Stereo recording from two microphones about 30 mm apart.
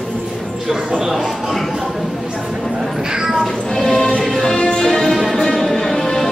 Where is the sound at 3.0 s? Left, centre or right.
Right.